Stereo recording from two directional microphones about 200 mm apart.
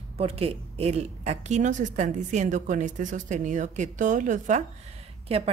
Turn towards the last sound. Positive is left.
turn(degrees=-30)  # may be behind; listen again after turning